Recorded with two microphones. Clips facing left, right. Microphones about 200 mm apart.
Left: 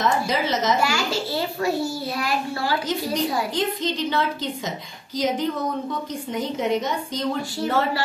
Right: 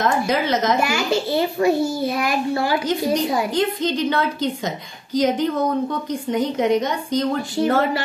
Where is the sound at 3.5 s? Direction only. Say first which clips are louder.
Right 4 dB; centre (ahead or behind).